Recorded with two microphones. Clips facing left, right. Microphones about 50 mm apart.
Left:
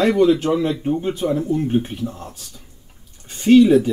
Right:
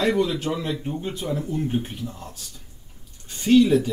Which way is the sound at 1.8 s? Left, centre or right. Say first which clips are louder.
Left 7 dB; left.